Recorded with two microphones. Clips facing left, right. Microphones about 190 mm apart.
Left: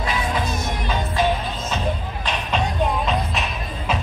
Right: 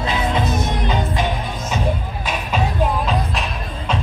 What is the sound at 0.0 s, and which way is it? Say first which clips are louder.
Music: right 3 dB; 25° right (ahead or behind).